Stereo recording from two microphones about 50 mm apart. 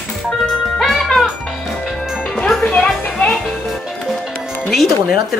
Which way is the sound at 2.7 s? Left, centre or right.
Left.